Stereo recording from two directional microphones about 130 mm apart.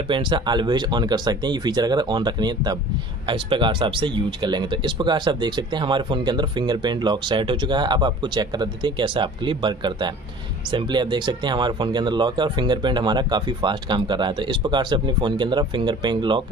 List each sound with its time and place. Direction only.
0.1 s speech: 35° right (ahead or behind)